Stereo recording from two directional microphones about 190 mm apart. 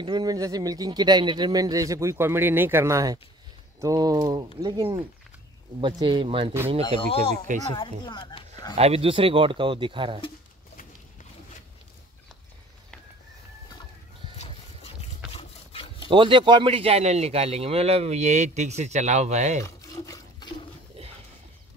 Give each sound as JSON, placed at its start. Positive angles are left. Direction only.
{"t": 0.0, "sound": "speech", "side_deg": -20}
{"t": 6.8, "sound": "speech", "side_deg": 25}
{"t": 8.7, "sound": "speech", "side_deg": -30}
{"t": 14.2, "sound": "music", "side_deg": -20}
{"t": 15.0, "sound": "a sound", "side_deg": 30}
{"t": 16.1, "sound": "a man's voice", "side_deg": -25}
{"t": 19.6, "sound": "a sound", "side_deg": 20}